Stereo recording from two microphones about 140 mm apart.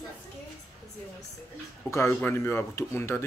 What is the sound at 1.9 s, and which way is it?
Speech, 20° left (ahead or behind).